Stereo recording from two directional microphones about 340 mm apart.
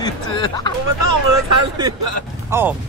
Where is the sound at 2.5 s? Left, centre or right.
Centre.